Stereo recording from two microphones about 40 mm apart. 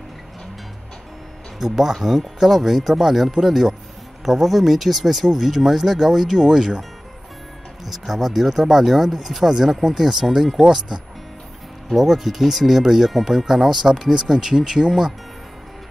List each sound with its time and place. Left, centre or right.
1.6 s speech: centre
7.8 s speech: centre
11.9 s speech: centre